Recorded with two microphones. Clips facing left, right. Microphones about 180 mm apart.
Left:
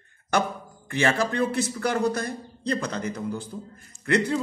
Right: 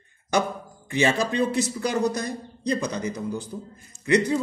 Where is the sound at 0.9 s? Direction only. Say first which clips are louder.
Right 1 dB; 15° right (ahead or behind).